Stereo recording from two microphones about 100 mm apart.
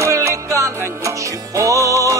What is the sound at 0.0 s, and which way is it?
Music, 30° right (ahead or behind).